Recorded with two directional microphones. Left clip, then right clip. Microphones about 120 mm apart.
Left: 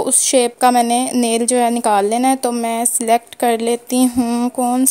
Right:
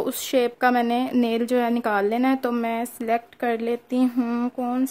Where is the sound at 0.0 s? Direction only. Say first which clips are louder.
Left 7 dB; 25° left (ahead or behind).